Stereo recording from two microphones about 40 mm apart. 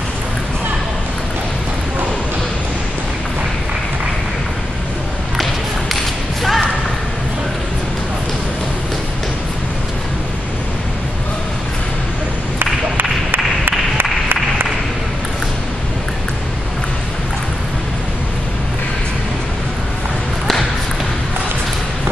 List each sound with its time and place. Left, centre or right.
6.4 s music: centre
12.5 s applause: right